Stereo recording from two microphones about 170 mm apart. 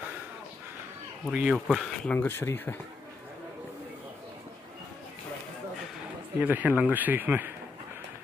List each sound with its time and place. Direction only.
1.3 s speech: 5° right (ahead or behind)
2.1 s speech: 15° left (ahead or behind)
6.4 s speech: 10° right (ahead or behind)